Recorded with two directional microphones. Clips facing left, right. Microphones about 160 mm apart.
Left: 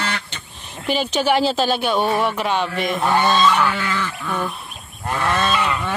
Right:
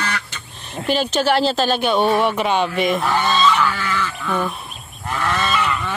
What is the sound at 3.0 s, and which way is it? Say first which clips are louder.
Speech: left 2 dB; 15° left (ahead or behind).